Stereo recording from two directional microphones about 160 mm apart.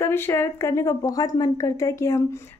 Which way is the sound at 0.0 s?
15° left (ahead or behind).